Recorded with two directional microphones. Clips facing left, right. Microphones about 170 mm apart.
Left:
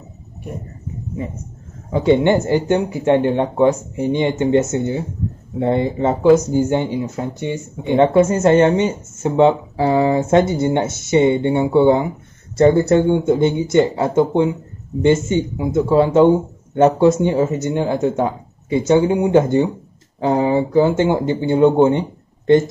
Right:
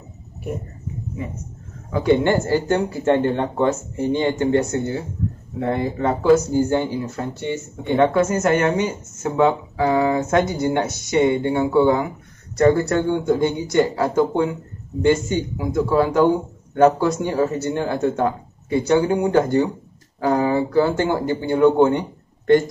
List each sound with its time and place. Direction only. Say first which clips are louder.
1.9 s speech: left 3 dB; 25° left (ahead or behind)
8.0 s speech: left 4 dB; 25° left (ahead or behind)